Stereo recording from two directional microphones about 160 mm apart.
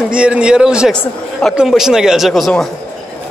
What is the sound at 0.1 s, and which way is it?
Speech, 5° right (ahead or behind).